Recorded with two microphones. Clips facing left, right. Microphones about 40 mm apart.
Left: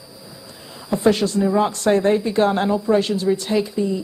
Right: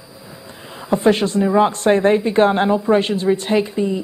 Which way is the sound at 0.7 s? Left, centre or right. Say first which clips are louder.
Right 2 dB; right.